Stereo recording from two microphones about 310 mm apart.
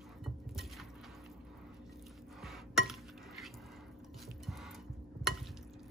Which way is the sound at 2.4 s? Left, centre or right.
Centre.